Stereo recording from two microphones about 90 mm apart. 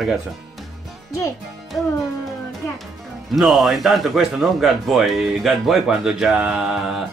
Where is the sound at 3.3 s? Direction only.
Centre (ahead or behind).